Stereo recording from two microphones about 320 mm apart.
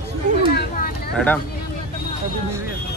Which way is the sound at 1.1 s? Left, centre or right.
Centre.